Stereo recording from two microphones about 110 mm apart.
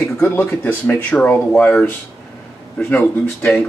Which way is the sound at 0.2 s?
15° left (ahead or behind).